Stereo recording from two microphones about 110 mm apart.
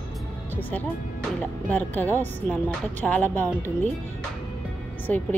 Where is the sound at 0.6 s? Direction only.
15° left (ahead or behind).